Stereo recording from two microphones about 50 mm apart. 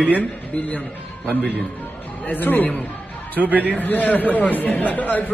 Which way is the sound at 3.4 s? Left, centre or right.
Right.